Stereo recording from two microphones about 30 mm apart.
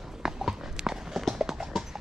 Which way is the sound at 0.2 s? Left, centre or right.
Centre.